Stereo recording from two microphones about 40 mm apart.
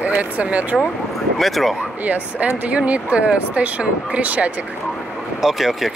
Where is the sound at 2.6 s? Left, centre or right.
Right.